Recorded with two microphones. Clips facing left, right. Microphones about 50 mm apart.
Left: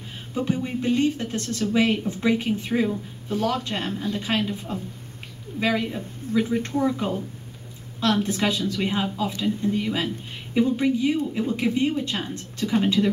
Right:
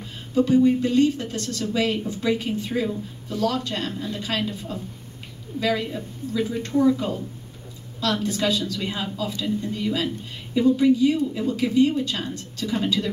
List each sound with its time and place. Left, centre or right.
0.3 s speech: left